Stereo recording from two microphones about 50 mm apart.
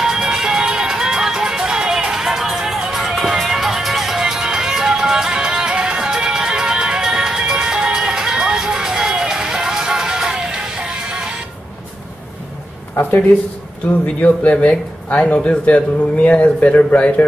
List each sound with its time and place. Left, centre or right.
0.0 s music: centre
12.9 s a sound: left
14.0 s speech: left